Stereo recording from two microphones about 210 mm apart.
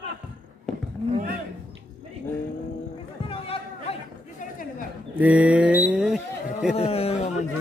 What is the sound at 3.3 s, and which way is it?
Chatter, 30° left (ahead or behind).